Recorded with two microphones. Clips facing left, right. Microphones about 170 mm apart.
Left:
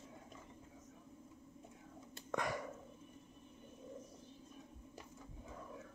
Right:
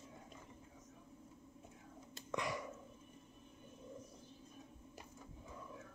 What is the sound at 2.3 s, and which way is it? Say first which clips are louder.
Dog: left 2 dB; 50° left (ahead or behind).